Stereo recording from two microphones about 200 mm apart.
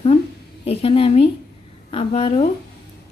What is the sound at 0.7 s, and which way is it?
A woman's voice, 30° left (ahead or behind).